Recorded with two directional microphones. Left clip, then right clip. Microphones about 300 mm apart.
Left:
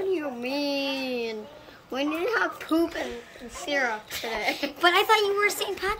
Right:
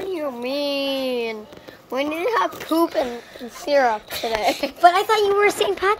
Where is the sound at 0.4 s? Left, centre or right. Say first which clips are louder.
Right 5 dB; centre.